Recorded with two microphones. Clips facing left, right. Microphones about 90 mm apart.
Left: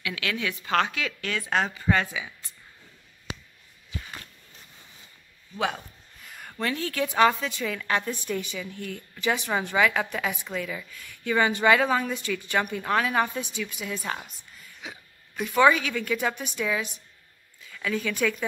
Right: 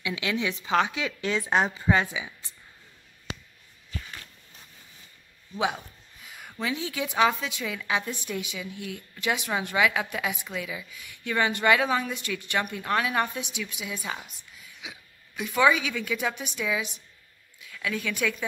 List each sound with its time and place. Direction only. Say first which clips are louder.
0.0 s a woman's voice: right 2 dB; 20° right (ahead or behind)
6.2 s a woman's voice: left 2 dB; 5° right (ahead or behind)